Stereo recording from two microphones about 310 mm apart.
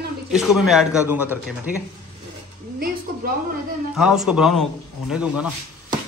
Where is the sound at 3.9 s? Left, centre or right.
Centre.